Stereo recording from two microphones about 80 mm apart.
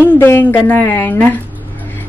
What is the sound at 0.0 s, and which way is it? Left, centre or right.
A woman's voice, left.